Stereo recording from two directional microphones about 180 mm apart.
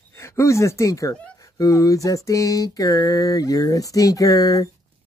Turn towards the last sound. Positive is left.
turn(degrees=20)  # may be behind; listen again after turning